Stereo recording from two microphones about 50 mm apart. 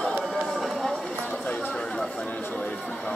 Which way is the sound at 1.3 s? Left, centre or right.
Centre.